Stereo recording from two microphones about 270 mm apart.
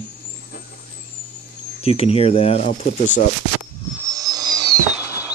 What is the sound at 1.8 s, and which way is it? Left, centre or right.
A man's voice, left.